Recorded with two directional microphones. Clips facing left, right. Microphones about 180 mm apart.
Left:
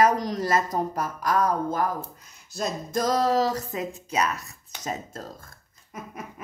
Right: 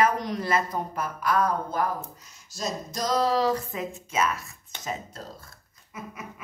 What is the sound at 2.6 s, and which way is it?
A woman's voice, 55° left (ahead or behind).